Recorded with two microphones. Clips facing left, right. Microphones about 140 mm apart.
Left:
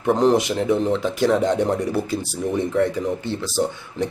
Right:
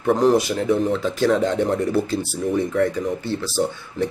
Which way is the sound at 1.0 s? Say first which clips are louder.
Even; 20° left (ahead or behind).